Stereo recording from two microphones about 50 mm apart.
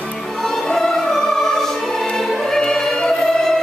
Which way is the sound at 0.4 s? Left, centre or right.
Centre.